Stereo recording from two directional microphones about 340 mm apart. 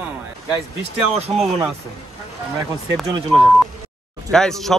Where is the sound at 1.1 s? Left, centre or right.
Centre.